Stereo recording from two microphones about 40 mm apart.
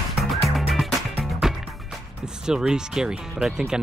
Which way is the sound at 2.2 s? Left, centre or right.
Centre.